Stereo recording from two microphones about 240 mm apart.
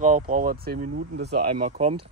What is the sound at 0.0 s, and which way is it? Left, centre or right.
Speech, right.